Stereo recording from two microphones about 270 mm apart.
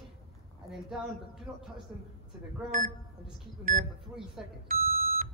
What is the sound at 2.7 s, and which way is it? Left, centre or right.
Speech, right.